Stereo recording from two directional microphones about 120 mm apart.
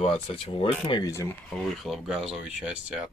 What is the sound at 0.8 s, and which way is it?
Speech, 30° left (ahead or behind).